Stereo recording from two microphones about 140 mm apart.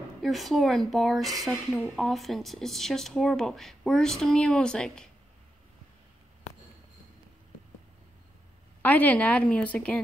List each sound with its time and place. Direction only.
0.2 s speech: centre (ahead or behind)
8.8 s a woman's voice: 10° left (ahead or behind)